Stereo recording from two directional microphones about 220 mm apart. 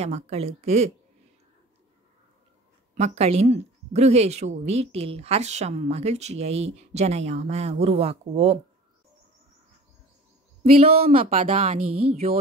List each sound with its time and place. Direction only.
0.0 s a woman's voice: 30° right (ahead or behind)
2.9 s a woman's voice: 30° right (ahead or behind)
10.8 s a woman's voice: 25° right (ahead or behind)
11.9 s speech: 90° right